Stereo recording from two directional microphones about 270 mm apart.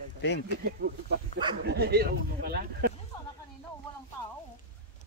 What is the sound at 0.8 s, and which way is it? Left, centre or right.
Speech, right.